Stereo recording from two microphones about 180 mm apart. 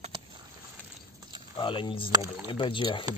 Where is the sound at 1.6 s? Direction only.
30° left (ahead or behind).